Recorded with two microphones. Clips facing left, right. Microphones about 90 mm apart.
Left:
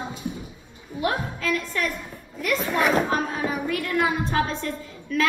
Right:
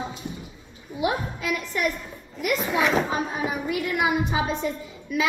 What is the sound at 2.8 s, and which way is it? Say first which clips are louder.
Speech: left 2 dB; centre (ahead or behind).